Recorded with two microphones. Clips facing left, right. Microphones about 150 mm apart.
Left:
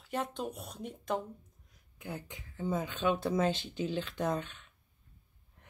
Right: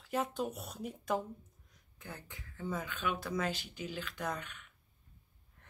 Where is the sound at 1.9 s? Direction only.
15° left (ahead or behind).